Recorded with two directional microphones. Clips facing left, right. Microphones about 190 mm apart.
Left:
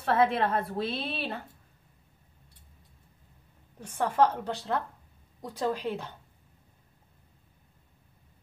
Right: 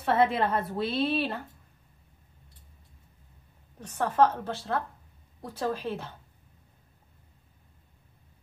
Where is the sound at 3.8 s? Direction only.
10° left (ahead or behind).